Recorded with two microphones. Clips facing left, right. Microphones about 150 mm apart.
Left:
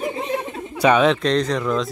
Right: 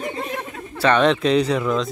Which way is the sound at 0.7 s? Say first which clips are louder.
Left 1 dB; 10° left (ahead or behind).